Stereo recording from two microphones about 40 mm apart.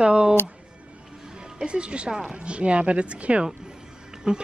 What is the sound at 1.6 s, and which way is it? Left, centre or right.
Speech, right.